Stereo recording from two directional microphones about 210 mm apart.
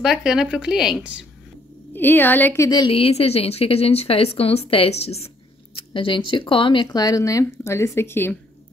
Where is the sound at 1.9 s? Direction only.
10° left (ahead or behind).